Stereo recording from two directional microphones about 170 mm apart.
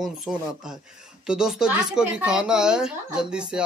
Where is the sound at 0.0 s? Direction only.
5° right (ahead or behind).